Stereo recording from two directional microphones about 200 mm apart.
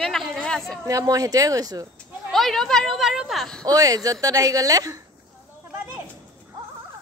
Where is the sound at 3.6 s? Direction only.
20° right (ahead or behind).